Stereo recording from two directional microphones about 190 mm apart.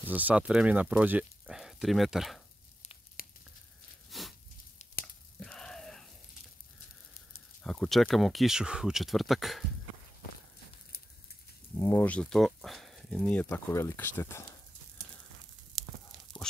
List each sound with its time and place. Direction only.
0.1 s speech: 10° right (ahead or behind)
3.2 s sizzle: 50° left (ahead or behind)
4.1 s a sound: centre (ahead or behind)
5.4 s a sound: 5° left (ahead or behind)
7.6 s speech: 5° left (ahead or behind)
11.7 s speech: 15° left (ahead or behind)
15.7 s whispering: centre (ahead or behind)